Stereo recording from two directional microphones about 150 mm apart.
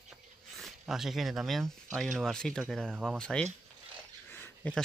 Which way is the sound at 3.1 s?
5° left (ahead or behind).